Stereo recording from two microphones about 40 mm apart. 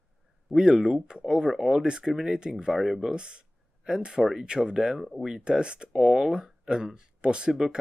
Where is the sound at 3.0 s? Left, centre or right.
Right.